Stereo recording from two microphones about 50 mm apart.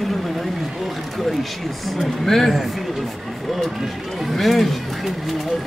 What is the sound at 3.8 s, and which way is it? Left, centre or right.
Speech, centre.